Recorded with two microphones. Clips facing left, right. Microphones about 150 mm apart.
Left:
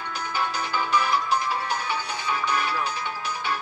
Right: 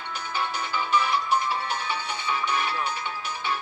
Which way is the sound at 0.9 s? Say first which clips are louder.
Even; 35° left (ahead or behind).